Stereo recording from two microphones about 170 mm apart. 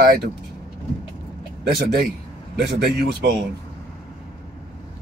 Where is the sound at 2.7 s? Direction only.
75° right (ahead or behind).